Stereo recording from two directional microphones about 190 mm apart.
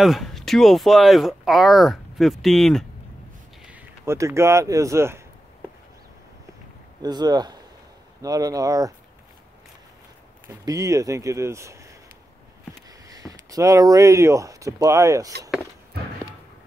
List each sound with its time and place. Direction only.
0.0 s speech: centre (ahead or behind)
3.6 s speech: 10° right (ahead or behind)
7.0 s speech: 20° right (ahead or behind)
10.4 s speech: 20° right (ahead or behind)
13.1 s speech: 20° right (ahead or behind)